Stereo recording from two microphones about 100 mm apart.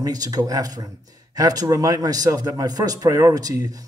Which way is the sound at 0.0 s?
40° right (ahead or behind).